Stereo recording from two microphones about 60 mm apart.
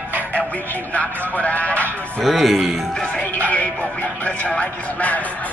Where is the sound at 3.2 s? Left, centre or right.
Left.